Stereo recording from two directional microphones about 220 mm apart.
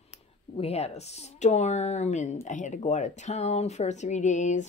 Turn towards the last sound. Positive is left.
turn(degrees=35)  # may be behind; listen again after turning